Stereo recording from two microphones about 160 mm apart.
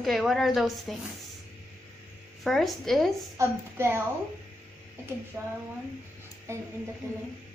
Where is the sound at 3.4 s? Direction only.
15° right (ahead or behind).